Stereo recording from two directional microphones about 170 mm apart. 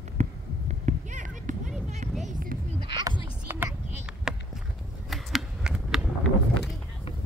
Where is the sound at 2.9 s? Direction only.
25° right (ahead or behind).